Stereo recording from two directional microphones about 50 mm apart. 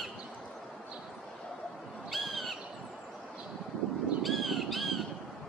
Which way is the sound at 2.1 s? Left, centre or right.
Centre.